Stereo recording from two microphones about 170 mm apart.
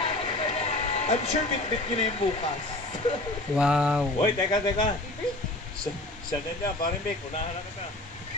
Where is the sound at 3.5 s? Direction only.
5° right (ahead or behind).